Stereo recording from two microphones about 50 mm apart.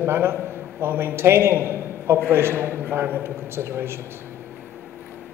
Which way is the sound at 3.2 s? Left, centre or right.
Right.